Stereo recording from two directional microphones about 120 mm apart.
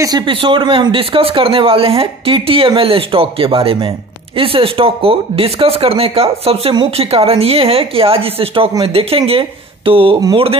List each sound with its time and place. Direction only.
0.0 s speech: 35° right (ahead or behind); by 10.6 s 50° right (ahead or behind)